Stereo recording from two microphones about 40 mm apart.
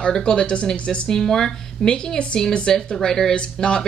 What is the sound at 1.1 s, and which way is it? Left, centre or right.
Speech, centre.